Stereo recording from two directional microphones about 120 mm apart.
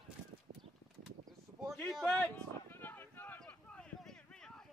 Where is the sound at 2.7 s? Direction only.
15° left (ahead or behind).